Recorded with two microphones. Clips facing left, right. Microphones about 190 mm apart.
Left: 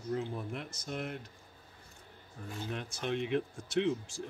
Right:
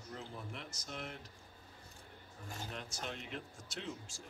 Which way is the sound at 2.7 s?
60° left (ahead or behind).